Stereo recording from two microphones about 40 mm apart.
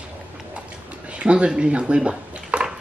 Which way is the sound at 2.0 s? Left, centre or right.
Right.